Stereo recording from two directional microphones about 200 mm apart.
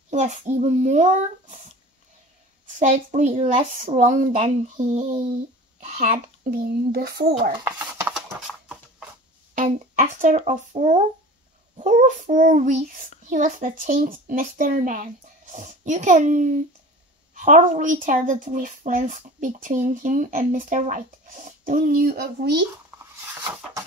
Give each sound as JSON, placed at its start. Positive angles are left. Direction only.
{"t": 0.1, "sound": "speech", "side_deg": -35}
{"t": 2.6, "sound": "a child's voice", "side_deg": -40}
{"t": 7.6, "sound": "a sound", "side_deg": -15}
{"t": 9.6, "sound": "speech", "side_deg": -40}